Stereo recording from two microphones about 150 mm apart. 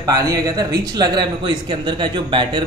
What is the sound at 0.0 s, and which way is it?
A man's voice, 25° right (ahead or behind).